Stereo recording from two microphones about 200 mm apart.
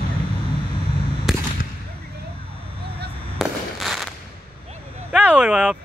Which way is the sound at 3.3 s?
Centre (ahead or behind).